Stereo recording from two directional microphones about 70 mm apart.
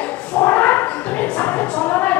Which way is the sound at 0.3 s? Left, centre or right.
Left.